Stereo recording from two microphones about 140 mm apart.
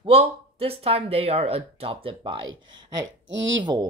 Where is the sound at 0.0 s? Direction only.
45° right (ahead or behind).